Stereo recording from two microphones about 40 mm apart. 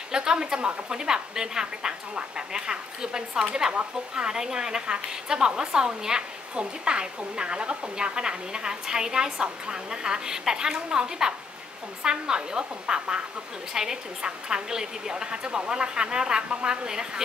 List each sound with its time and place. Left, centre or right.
0.1 s a woman's voice: centre